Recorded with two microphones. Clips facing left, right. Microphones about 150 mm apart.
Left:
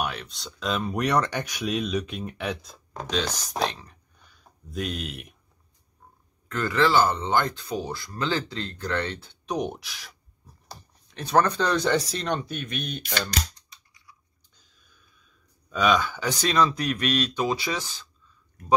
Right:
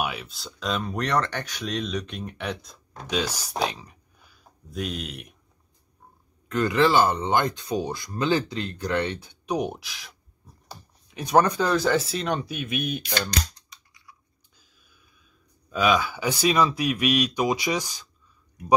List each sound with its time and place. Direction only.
0.0 s speech: 5° right (ahead or behind)
6.5 s speech: 20° right (ahead or behind)
14.6 s a sound: 10° right (ahead or behind)
15.7 s speech: 5° right (ahead or behind)